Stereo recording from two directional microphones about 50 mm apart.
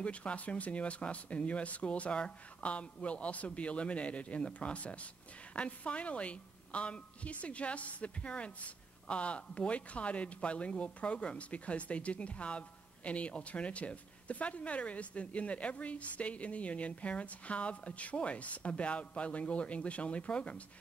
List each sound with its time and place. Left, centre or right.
0.0 s speech: left